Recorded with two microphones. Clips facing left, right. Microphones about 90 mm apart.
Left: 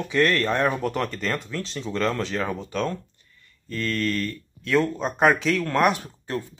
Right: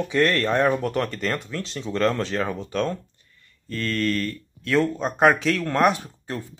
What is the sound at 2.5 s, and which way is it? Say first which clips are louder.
Mantra: right 2 dB; 10° left (ahead or behind).